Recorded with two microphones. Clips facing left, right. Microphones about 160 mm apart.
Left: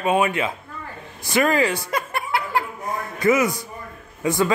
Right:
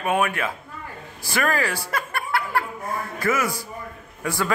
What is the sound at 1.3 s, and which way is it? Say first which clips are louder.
Chuckle: left 5 dB; 20° left (ahead or behind).